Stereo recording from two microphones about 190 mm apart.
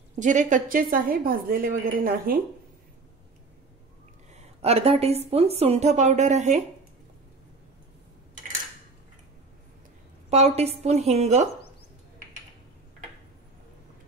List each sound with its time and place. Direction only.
0.1 s a woman's voice: 40° right (ahead or behind)
4.3 s a sound: 35° right (ahead or behind)
5.3 s speech: 30° right (ahead or behind)
10.3 s speech: 35° right (ahead or behind)